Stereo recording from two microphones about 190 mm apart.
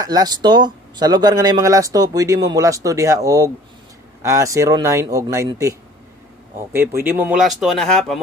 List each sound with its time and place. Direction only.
0.0 s speech: 20° right (ahead or behind); by 8.2 s centre (ahead or behind)